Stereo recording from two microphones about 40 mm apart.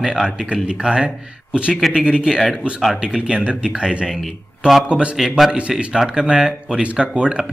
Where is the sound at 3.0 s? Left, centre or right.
Right.